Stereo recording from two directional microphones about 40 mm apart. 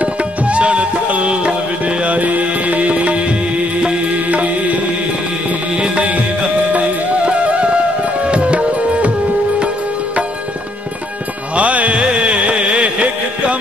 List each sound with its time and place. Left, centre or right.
0.0 s music: right
5.9 s music: right
8.3 s tabla: right
11.5 s music: right